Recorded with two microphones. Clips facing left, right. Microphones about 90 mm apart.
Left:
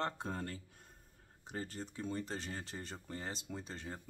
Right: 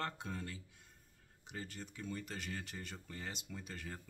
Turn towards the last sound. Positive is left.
turn(degrees=25)  # may be behind; listen again after turning